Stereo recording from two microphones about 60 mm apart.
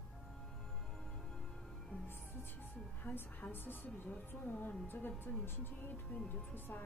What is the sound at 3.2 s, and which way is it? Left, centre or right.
A woman's voice, left.